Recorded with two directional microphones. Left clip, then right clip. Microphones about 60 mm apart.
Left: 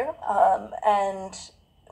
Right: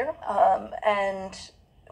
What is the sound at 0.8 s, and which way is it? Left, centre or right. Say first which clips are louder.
Speech: left 3 dB; right.